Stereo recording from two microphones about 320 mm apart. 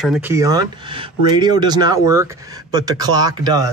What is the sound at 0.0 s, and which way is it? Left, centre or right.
Speech, centre.